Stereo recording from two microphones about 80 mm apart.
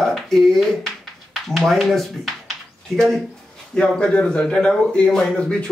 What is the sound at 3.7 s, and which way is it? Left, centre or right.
A man's voice, centre.